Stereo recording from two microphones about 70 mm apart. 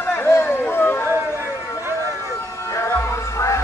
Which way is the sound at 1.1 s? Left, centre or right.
Right.